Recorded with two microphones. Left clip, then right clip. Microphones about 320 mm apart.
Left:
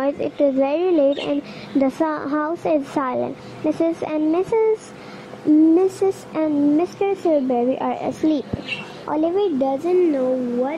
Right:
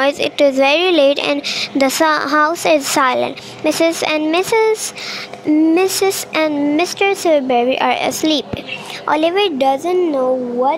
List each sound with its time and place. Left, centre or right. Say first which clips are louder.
0.0 s speech: right 6 dB; right
5.8 s speech: right 4 dB; right
9.8 s speech: right 3 dB; right